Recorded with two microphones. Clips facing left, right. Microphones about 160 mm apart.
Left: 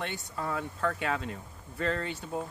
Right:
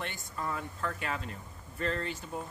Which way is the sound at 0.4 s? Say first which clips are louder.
Left 4 dB; 80° left.